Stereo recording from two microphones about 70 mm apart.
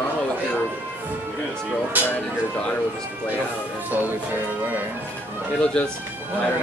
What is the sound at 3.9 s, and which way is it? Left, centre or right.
Speech, right.